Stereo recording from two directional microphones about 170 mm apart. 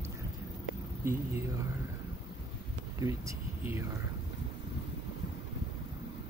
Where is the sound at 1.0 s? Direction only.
15° right (ahead or behind).